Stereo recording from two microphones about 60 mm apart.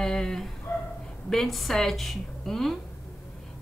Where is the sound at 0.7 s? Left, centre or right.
Left.